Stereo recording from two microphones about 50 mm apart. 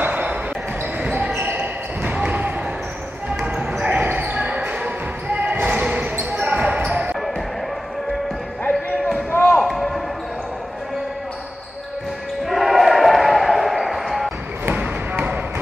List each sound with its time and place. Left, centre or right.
0.0 s a sound: right
1.0 s basketball bounce: right
4.0 s basketball bounce: right
6.3 s a sound: right
9.3 s basketball bounce: left
9.6 s basketball bounce: centre
12.4 s basketball bounce: centre
14.7 s basketball bounce: right